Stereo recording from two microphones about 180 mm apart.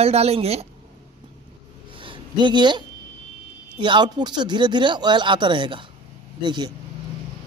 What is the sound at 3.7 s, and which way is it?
Speech, 25° right (ahead or behind).